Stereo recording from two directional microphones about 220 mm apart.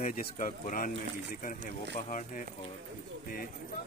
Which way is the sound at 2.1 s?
35° left (ahead or behind).